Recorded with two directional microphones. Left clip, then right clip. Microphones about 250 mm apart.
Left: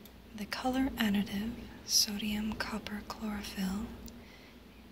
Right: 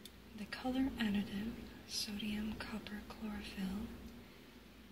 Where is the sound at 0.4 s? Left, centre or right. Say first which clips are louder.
Left 6 dB; left.